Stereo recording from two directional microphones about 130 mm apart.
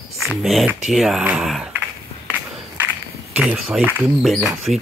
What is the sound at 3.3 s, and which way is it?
Speech, 10° right (ahead or behind).